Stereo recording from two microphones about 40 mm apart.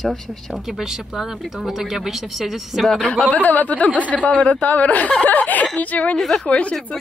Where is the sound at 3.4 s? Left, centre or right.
Left.